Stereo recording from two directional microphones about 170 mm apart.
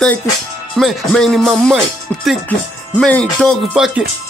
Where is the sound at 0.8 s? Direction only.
Centre (ahead or behind).